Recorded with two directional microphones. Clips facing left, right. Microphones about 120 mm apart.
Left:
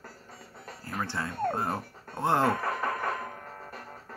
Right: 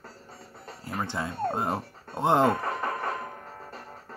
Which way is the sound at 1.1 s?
20° right (ahead or behind).